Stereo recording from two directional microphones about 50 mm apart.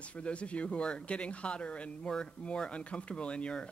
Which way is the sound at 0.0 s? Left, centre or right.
Left.